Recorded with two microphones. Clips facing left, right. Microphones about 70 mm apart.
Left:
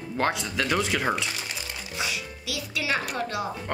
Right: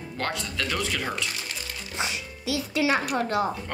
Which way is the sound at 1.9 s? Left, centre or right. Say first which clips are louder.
Right 1 dB; right.